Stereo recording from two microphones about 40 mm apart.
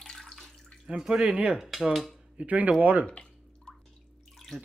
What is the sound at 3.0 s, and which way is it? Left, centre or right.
Drip, left.